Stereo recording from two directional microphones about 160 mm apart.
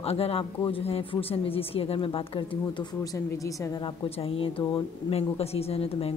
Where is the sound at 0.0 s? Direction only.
40° left (ahead or behind).